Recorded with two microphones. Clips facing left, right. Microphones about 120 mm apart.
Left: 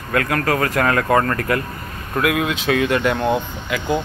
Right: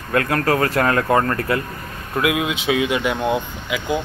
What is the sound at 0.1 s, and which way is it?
Speech, 30° right (ahead or behind).